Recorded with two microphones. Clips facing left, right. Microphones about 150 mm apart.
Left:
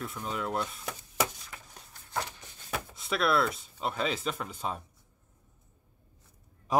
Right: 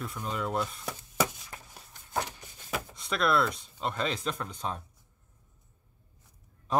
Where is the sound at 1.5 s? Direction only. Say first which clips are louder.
Right 2 dB; 35° right (ahead or behind).